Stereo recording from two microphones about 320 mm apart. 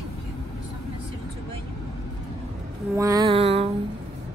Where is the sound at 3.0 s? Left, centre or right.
Centre.